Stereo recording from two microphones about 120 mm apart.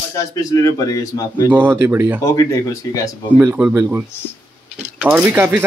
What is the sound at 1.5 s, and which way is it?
Speech, 20° right (ahead or behind).